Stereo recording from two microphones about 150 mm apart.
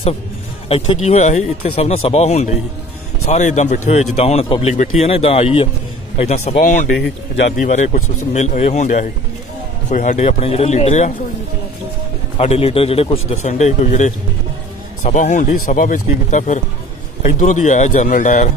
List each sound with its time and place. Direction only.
0.7 s speech: 45° left (ahead or behind)
6.6 s a man's voice: 75° left (ahead or behind)
7.5 s speech: 55° left (ahead or behind)
12.4 s speech: 40° left (ahead or behind); by 18.5 s 60° left (ahead or behind)